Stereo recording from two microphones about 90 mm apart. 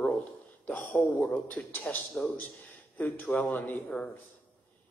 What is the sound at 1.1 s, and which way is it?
Speech, 15° left (ahead or behind).